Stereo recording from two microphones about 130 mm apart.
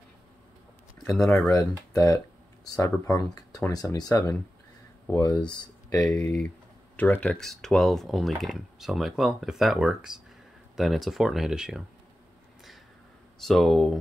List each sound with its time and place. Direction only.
1.5 s speech: 25° left (ahead or behind)
5.9 s speech: 10° left (ahead or behind); by 11.8 s 5° right (ahead or behind)
13.4 s speech: centre (ahead or behind)